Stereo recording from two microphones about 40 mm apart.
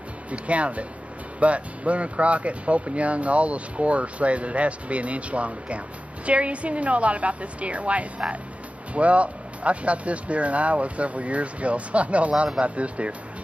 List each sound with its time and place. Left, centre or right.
0.3 s speech: right